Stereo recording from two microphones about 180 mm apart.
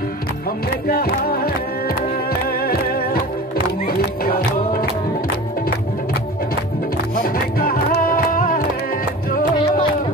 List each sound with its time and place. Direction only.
0.8 s music: 55° left (ahead or behind)
7.2 s music: 55° left (ahead or behind)